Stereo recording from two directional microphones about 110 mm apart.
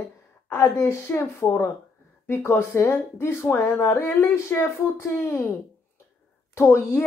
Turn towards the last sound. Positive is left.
turn(degrees=20)  # may be behind; listen again after turning